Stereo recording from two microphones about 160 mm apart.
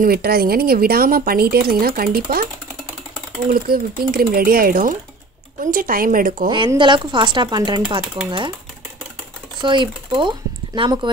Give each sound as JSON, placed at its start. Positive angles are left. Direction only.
{"t": 0.0, "sound": "speech", "side_deg": -75}
{"t": 3.5, "sound": "speech", "side_deg": -65}
{"t": 6.8, "sound": "speech", "side_deg": -30}
{"t": 9.6, "sound": "speech", "side_deg": -30}